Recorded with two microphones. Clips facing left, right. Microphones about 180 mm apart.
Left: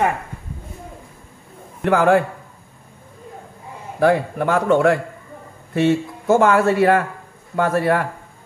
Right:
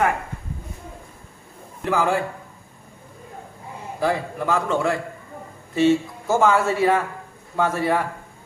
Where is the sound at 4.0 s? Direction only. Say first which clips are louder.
Left 7 dB; 60° left (ahead or behind).